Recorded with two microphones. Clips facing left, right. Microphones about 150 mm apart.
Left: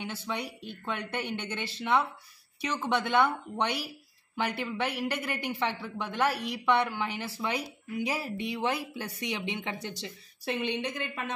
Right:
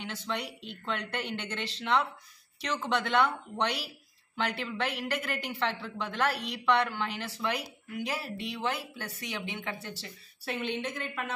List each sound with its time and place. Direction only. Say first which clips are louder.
0.0 s speech: left 1 dB; 10° left (ahead or behind)